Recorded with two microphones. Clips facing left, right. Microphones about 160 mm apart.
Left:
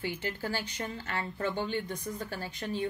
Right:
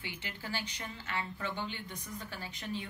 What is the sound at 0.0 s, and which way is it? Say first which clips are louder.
A woman's voice: left 9 dB; 45° left (ahead or behind).